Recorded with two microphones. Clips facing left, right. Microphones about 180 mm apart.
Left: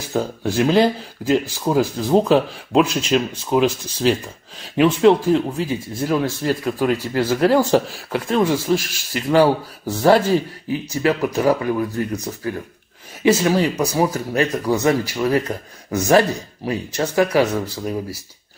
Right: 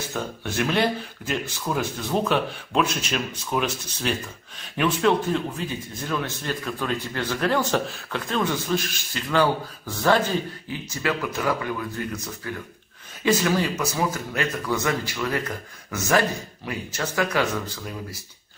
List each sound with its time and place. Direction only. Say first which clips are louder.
0.1 s speech: left 13 dB; 30° left (ahead or behind)